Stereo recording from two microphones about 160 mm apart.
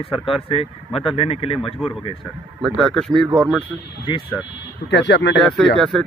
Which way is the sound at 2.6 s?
Centre (ahead or behind).